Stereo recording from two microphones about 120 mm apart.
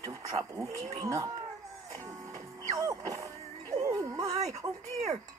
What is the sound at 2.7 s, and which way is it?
Music, 30° right (ahead or behind).